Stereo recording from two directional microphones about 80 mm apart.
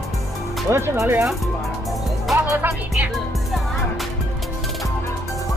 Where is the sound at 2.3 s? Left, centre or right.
Right.